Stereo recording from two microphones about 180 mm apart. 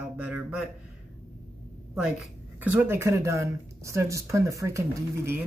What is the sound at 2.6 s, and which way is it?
Speech, 10° right (ahead or behind).